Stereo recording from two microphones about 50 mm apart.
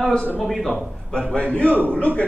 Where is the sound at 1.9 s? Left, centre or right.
Left.